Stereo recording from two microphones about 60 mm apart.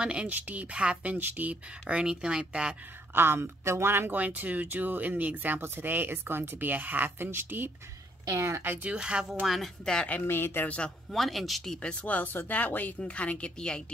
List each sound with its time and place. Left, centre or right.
0.0 s speech: centre
3.2 s speech: right
4.2 s speech: right
8.3 s speech: right
8.8 s speech: centre
10.2 s speech: left
11.1 s speech: centre
11.8 s speech: centre
12.2 s speech: left; by 13.9 s centre